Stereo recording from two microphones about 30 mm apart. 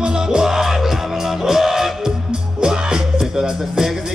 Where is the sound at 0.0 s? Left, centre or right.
Right.